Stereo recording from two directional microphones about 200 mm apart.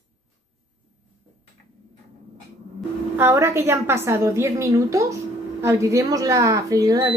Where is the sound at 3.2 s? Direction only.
15° right (ahead or behind).